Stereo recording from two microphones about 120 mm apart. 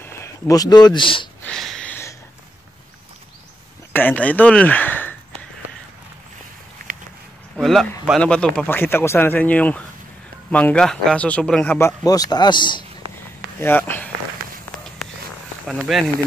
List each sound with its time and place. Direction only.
0.0 s speech: 25° left (ahead or behind); by 1.3 s 45° left (ahead or behind)
1.4 s a sound: 5° left (ahead or behind)
1.9 s a sound: 20° left (ahead or behind)
3.9 s speech: 15° left (ahead or behind)
7.5 s speech: 5° left (ahead or behind)
11.8 s speech: 30° left (ahead or behind)
13.6 s speech: 20° left (ahead or behind)
15.6 s speech: centre (ahead or behind)